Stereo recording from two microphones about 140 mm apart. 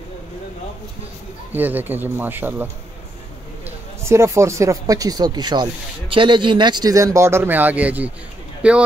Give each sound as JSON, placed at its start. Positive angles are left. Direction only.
{"t": 1.5, "sound": "a man's voice", "side_deg": -15}